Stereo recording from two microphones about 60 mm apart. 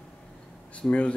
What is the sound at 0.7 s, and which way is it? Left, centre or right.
Speech, centre.